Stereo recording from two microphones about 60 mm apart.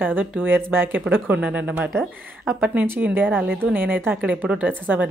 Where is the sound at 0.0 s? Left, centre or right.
Right.